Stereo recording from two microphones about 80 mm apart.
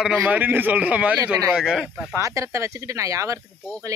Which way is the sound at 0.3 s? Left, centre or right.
Right.